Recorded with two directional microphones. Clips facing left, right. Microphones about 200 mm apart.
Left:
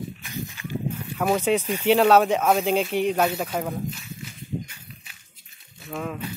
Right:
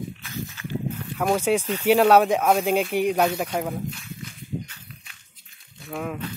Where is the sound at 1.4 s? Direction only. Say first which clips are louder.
Even; 10° right (ahead or behind).